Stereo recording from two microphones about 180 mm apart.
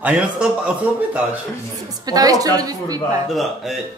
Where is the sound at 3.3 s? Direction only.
Centre (ahead or behind).